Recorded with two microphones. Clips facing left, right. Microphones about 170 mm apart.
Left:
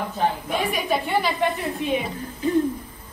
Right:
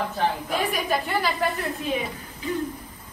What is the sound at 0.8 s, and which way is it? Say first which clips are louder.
Speech: left 2 dB; centre (ahead or behind).